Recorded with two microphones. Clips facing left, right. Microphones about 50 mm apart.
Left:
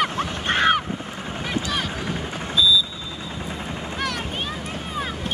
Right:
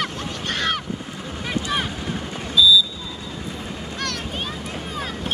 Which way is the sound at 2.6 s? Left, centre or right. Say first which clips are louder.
Right 3 dB; left.